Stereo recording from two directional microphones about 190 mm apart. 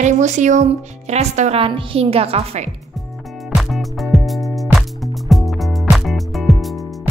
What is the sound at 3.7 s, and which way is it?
Music, centre (ahead or behind).